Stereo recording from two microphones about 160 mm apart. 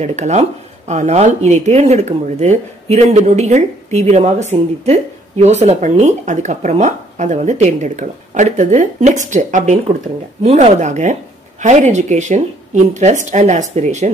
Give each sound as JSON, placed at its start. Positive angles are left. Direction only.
{"t": 0.0, "sound": "speech", "side_deg": -45}